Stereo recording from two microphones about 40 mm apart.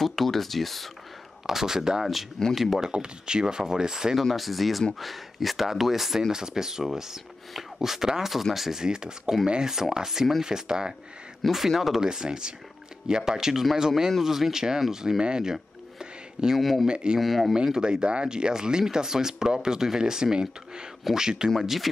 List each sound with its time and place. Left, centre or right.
0.0 s speech: centre
1.5 s speech: centre
2.8 s speech: right
4.2 s speech: centre
11.4 s speech: centre
12.0 s speech: centre
16.0 s a sound: centre
16.5 s speech: centre
16.8 s speech: right
17.2 s speech: centre
17.6 s speech: centre